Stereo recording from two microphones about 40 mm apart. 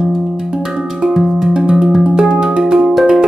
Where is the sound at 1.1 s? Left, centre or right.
Centre.